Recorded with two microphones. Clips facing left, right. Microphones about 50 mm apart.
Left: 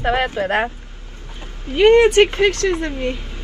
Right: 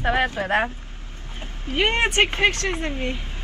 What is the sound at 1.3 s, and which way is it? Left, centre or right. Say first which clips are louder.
Speech: left 4 dB; right.